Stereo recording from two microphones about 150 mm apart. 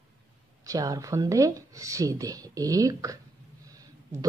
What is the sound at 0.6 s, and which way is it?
Speech, 20° right (ahead or behind).